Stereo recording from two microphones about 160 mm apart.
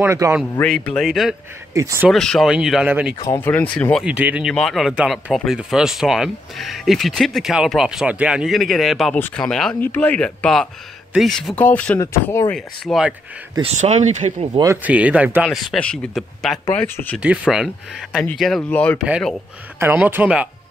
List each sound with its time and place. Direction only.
0.0 s speech: 15° right (ahead or behind)
0.6 s speech: 5° left (ahead or behind)
1.7 s speech: 20° right (ahead or behind)
2.0 s speech: 5° left (ahead or behind)
3.4 s speech: 10° left (ahead or behind)
4.0 s speech: 5° right (ahead or behind); by 12.5 s 15° left (ahead or behind)
12.5 s speech: centre (ahead or behind)
13.6 s speech: 40° right (ahead or behind)
14.4 s speech: 25° right (ahead or behind)
14.8 s speech: 10° right (ahead or behind); by 17.2 s 10° left (ahead or behind)
17.2 s speech: 5° right (ahead or behind)
19.8 s speech: 10° right (ahead or behind)